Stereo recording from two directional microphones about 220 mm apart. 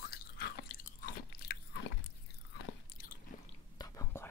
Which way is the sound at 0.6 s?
40° left (ahead or behind).